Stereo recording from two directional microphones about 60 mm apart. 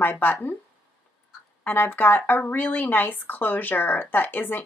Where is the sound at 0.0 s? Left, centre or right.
Left.